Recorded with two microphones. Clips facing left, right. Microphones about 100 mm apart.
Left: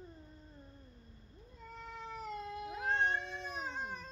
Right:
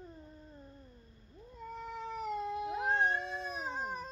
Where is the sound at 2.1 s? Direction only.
20° right (ahead or behind).